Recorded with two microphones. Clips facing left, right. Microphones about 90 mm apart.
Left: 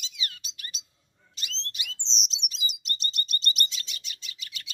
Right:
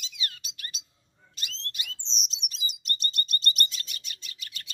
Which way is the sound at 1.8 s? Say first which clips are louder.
Left 2 dB; 45° right (ahead or behind).